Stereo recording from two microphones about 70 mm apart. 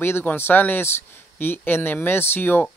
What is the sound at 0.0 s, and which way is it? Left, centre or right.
Speech, left.